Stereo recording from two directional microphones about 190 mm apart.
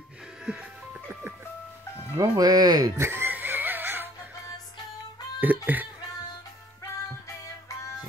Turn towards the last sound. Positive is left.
turn(degrees=15)  # may be behind; listen again after turning